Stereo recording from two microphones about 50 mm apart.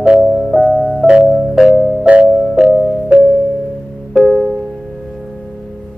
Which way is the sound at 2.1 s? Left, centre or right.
Right.